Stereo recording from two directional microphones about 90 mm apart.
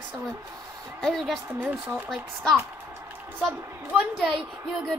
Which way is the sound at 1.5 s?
15° right (ahead or behind).